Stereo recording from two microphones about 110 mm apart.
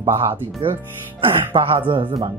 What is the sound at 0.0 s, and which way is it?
Speech, 25° right (ahead or behind).